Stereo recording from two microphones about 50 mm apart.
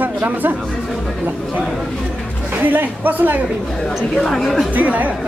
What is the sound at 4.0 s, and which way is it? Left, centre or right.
Speech, centre.